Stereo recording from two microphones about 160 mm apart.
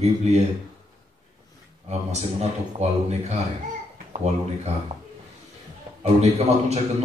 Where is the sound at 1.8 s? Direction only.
45° right (ahead or behind).